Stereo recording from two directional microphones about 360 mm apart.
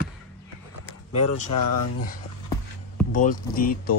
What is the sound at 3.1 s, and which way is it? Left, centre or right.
Speech, left.